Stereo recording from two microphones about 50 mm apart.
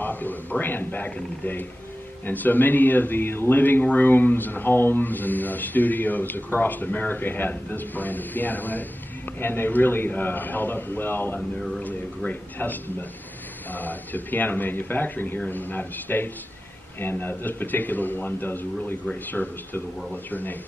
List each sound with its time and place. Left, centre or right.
0.0 s a man's voice: left